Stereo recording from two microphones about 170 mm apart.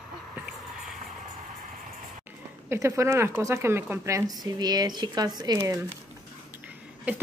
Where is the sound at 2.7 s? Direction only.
15° right (ahead or behind).